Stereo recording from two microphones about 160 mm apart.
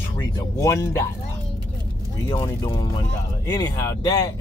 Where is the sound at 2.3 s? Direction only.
25° left (ahead or behind).